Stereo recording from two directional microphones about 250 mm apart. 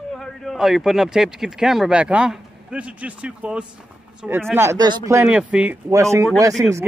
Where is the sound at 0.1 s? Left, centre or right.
Centre.